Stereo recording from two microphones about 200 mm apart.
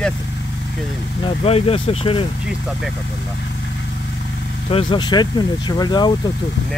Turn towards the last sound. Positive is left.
turn(degrees=20)  # may be behind; listen again after turning